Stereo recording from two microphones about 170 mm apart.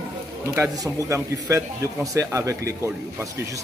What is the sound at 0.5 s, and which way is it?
A man's voice, 20° right (ahead or behind).